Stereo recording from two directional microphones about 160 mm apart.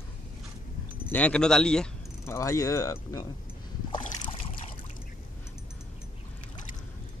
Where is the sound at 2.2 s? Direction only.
20° left (ahead or behind).